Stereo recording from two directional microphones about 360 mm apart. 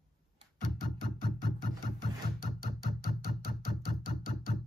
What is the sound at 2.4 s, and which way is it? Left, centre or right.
Music, left.